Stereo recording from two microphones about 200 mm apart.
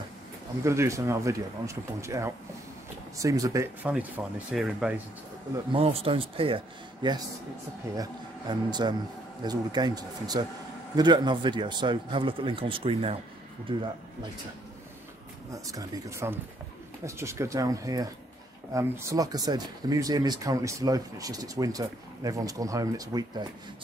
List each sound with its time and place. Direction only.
0.7 s speech: 15° right (ahead or behind)
4.5 s speech: 5° right (ahead or behind)
5.7 s a man's voice: 30° right (ahead or behind)
15.5 s speech: 15° right (ahead or behind)